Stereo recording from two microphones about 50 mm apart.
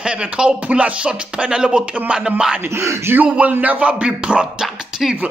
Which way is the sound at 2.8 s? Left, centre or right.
Right.